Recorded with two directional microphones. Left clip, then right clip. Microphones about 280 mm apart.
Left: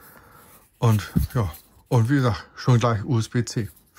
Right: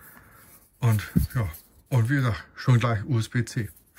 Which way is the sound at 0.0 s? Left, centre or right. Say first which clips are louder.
Left 2 dB; centre.